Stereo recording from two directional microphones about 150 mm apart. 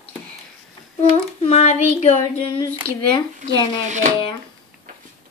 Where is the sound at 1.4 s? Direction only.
45° left (ahead or behind).